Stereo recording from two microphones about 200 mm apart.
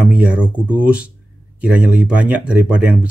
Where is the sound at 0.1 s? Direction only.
5° right (ahead or behind).